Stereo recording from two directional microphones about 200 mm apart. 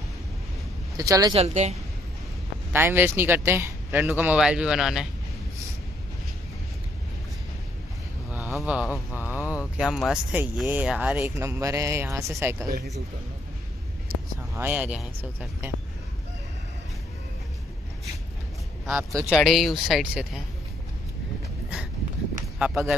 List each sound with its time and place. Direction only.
0.9 s speech: 15° right (ahead or behind)
1.3 s a woman's voice: 35° right (ahead or behind)
2.7 s speech: 10° right (ahead or behind)
8.5 s speech: 5° right (ahead or behind)
8.8 s speech: 10° left (ahead or behind)
9.2 s speech: 5° right (ahead or behind)
14.5 s speech: 10° right (ahead or behind)
18.9 s speech: 10° right (ahead or behind)
22.6 s speech: centre (ahead or behind)